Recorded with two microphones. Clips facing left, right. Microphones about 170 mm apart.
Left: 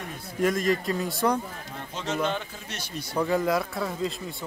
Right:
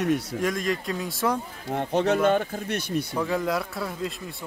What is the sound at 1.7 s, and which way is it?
Speech, 65° right (ahead or behind).